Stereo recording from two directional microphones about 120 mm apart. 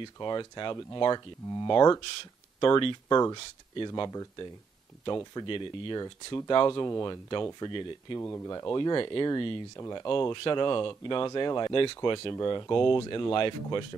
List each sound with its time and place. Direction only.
0.0 s speech: 40° left (ahead or behind)
8.2 s speech: 20° left (ahead or behind)
8.7 s speech: 35° left (ahead or behind)
10.0 s speech: 45° left (ahead or behind)